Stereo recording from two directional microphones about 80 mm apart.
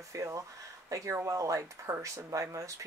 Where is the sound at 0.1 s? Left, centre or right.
Right.